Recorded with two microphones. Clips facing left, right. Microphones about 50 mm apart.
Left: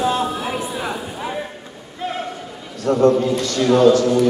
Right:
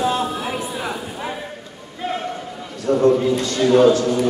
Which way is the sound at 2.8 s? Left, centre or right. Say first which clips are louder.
Left 2 dB; left.